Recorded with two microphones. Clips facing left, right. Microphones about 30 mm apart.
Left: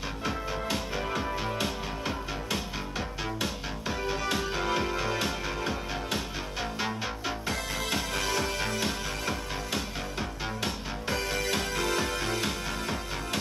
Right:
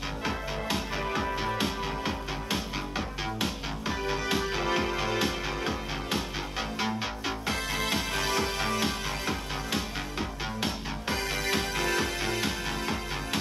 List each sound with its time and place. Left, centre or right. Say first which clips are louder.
1.1 s music: right 2 dB; right